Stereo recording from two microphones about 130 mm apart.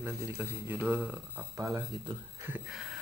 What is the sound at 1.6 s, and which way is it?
Speech, 30° right (ahead or behind).